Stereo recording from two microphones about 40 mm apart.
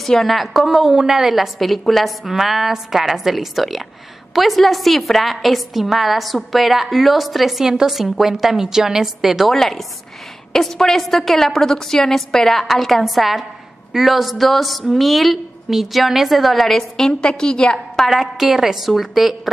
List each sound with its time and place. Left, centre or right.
0.1 s a woman's voice: centre
9.5 s a woman's voice: centre
18.0 s a woman's voice: centre